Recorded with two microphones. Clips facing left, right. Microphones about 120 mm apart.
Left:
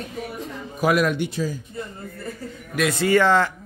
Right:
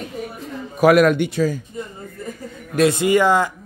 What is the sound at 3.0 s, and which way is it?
Speech, 15° right (ahead or behind).